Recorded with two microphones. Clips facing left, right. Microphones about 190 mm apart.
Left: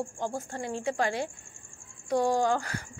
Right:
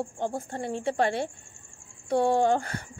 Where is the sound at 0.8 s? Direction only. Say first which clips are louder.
Right 3 dB; 30° right (ahead or behind).